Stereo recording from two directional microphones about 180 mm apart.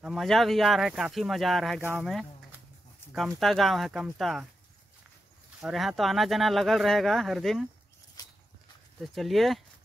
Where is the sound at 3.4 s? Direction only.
Centre (ahead or behind).